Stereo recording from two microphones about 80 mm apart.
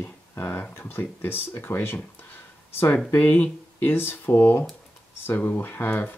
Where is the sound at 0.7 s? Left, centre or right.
Left.